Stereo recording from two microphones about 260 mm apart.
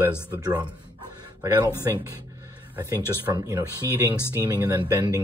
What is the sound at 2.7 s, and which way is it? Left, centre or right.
Speech, centre.